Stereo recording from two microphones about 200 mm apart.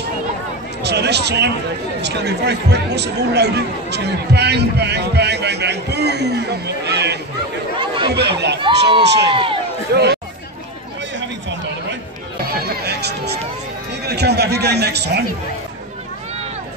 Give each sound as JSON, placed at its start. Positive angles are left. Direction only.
{"t": 0.8, "sound": "speech", "side_deg": -55}
{"t": 7.8, "sound": "chatter", "side_deg": -25}
{"t": 8.1, "sound": "speech", "side_deg": -60}
{"t": 8.6, "sound": "speech", "side_deg": -25}
{"t": 9.0, "sound": "speech", "side_deg": -60}
{"t": 9.3, "sound": "speech", "side_deg": -25}
{"t": 9.9, "sound": "speech", "side_deg": -55}
{"t": 12.6, "sound": "music", "side_deg": -55}
{"t": 14.0, "sound": "speech", "side_deg": -55}